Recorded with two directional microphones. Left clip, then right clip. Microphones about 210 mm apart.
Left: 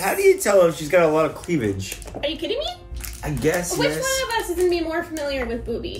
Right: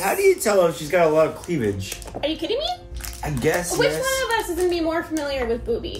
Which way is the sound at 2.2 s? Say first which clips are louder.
Right 1 dB; 15° right (ahead or behind).